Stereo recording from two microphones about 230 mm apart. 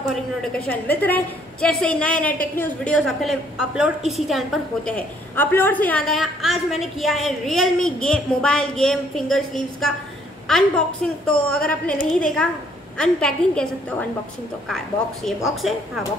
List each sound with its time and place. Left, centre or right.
0.7 s a woman's voice: centre
15.2 s a woman's voice: centre